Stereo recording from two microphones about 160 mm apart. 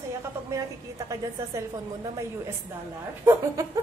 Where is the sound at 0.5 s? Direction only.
20° right (ahead or behind).